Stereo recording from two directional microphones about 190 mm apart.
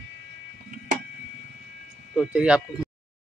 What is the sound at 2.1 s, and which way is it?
Speech, 5° right (ahead or behind).